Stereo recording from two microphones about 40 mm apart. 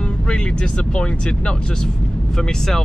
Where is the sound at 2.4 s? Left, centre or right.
Centre.